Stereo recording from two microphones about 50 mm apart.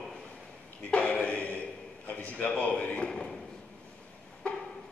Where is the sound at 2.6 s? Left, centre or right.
Left.